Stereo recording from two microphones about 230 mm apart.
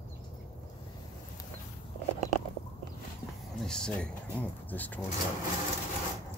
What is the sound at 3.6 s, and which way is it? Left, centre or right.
Speech, centre.